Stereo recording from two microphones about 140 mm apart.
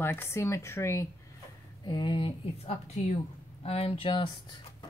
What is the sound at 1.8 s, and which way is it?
Speech, 35° left (ahead or behind).